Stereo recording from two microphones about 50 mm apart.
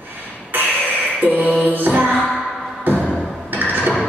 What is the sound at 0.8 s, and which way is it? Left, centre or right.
Music, left.